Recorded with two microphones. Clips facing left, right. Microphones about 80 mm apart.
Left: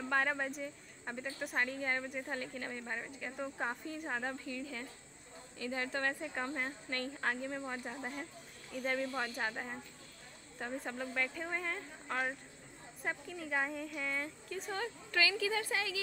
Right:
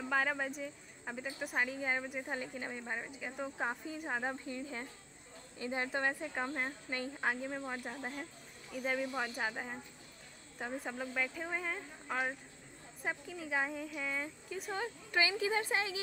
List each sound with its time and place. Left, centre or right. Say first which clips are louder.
0.0 s speech: even; centre
4.5 s speech: right 1 dB; right